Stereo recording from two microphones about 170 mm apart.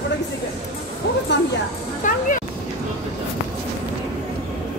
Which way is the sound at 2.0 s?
50° left (ahead or behind).